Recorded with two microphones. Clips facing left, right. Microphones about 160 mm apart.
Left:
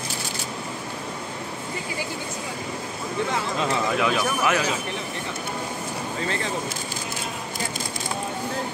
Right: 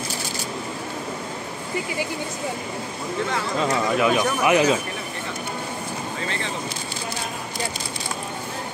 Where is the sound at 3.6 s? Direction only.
Centre (ahead or behind).